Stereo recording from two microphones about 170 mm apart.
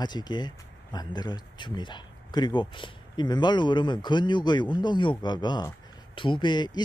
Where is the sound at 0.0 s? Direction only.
25° left (ahead or behind).